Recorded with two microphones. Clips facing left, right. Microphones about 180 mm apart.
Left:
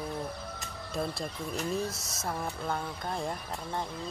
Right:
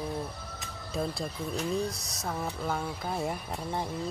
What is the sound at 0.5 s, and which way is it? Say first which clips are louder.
Speech: right 3 dB; centre (ahead or behind).